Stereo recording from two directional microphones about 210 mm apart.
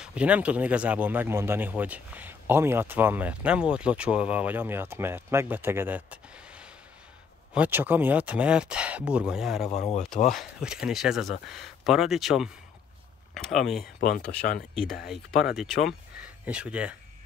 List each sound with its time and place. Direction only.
0.0 s speech: 5° right (ahead or behind)
9.7 s speech: 30° left (ahead or behind)
10.0 s speech: centre (ahead or behind)
13.9 s speech: 45° left (ahead or behind)
15.0 s speech: centre (ahead or behind)